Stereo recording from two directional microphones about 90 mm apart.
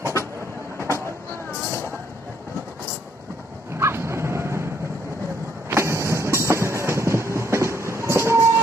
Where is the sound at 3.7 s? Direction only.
30° right (ahead or behind).